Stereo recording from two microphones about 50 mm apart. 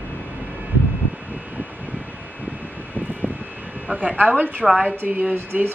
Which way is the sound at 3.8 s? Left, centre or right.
Right.